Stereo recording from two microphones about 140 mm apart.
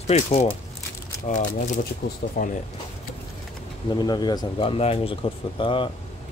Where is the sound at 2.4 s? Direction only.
90° left.